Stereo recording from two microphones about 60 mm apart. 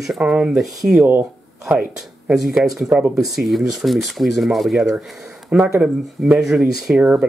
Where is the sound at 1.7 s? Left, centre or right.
Centre.